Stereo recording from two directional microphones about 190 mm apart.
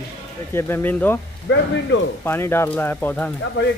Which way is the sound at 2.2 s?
10° left (ahead or behind).